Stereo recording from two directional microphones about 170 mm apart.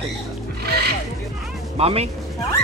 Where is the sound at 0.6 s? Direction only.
70° right (ahead or behind).